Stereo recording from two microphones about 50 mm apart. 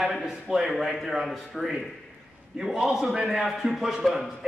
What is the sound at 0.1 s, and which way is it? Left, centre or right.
Speech, centre.